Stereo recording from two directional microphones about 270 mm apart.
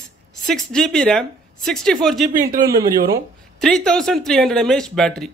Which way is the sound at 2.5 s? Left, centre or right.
Right.